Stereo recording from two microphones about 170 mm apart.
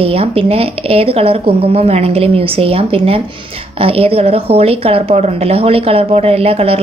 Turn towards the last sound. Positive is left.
turn(degrees=-35)  # may be behind; listen again after turning